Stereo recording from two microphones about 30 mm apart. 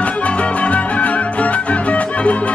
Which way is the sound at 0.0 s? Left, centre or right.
Left.